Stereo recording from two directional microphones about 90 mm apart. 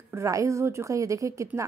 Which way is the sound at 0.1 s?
35° right (ahead or behind).